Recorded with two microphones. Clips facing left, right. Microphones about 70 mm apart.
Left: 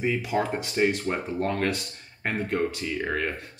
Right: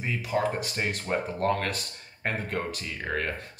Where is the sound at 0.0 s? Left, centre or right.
Centre.